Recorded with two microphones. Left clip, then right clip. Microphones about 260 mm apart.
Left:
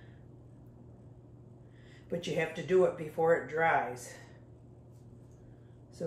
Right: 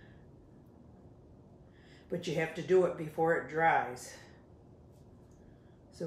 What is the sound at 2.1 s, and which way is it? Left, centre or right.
Speech, centre.